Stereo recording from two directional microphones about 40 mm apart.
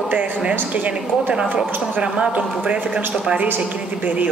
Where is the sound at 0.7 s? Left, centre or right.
Right.